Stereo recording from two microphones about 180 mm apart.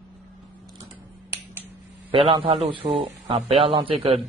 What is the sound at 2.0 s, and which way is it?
Speech, 30° right (ahead or behind).